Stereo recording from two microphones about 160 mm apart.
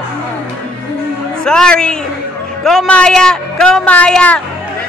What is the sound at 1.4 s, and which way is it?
A man's voice, 5° left (ahead or behind).